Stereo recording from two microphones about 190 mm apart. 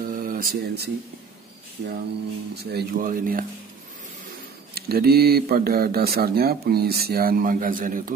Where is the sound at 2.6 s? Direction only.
60° right (ahead or behind).